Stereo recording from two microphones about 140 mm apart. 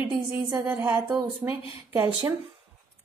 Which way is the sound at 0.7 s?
10° right (ahead or behind).